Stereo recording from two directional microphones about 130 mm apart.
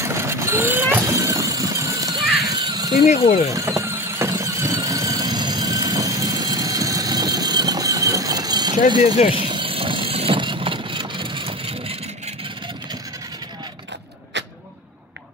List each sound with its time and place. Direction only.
0.0 s vehicle: 20° right (ahead or behind)
2.4 s children playing: 30° right (ahead or behind)
3.1 s speech: 55° left (ahead or behind)
3.4 s squeal: 25° right (ahead or behind)
9.3 s vehicle: 40° right (ahead or behind)